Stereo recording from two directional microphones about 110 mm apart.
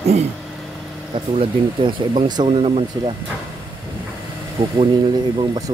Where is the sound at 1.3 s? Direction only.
45° right (ahead or behind).